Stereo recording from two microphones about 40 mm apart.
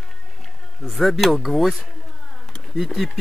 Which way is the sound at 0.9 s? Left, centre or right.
Centre.